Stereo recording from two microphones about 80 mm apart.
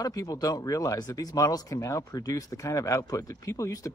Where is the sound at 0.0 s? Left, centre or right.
Left.